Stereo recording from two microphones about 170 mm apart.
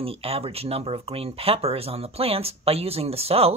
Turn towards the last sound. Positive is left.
turn(degrees=-35)  # may be behind; listen again after turning